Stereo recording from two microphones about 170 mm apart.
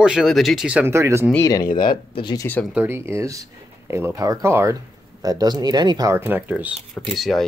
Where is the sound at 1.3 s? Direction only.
20° left (ahead or behind).